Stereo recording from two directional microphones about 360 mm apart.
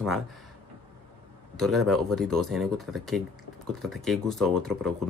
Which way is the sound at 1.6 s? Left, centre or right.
Centre.